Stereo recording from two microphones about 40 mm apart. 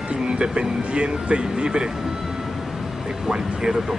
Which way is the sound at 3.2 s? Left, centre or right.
Centre.